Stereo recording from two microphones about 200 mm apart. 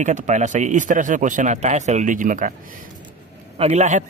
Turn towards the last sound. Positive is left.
turn(degrees=-35)  # may be behind; listen again after turning